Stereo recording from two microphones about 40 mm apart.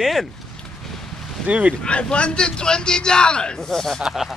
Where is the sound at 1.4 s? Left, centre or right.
Right.